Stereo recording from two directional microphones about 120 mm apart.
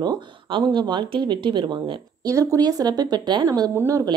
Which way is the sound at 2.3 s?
25° right (ahead or behind).